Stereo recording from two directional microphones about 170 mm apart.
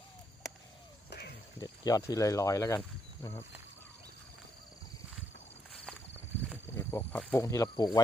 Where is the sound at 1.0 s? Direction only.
75° left (ahead or behind).